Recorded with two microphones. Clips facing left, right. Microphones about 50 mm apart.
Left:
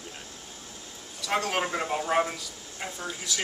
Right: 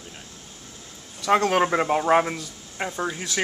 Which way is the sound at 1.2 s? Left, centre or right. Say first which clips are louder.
Right 8 dB; right.